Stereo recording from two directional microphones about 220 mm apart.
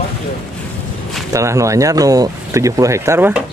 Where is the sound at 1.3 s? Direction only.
15° right (ahead or behind).